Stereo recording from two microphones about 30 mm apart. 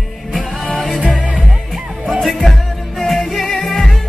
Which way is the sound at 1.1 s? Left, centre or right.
Right.